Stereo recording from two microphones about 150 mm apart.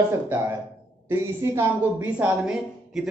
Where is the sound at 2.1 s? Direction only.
5° right (ahead or behind).